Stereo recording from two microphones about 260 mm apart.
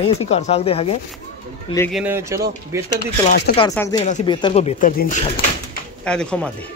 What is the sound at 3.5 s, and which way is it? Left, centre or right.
Speech, centre.